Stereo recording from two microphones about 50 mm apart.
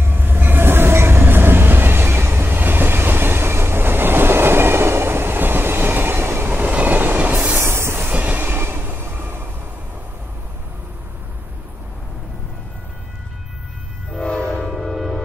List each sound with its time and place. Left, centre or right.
0.0 s train: right
2.4 s train: right
7.6 s train: right
8.1 s train: right
14.2 s train: left
14.7 s music: centre